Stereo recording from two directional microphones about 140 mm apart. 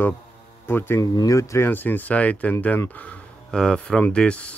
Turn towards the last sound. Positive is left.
turn(degrees=10)  # may be behind; listen again after turning